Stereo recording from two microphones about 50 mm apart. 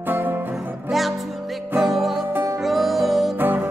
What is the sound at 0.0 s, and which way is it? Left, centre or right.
Music, right.